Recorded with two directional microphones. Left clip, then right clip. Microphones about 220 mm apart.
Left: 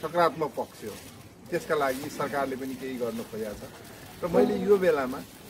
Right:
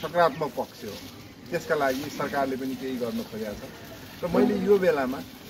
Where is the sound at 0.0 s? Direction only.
10° left (ahead or behind).